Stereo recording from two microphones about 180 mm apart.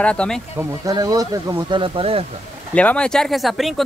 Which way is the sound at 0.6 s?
20° right (ahead or behind).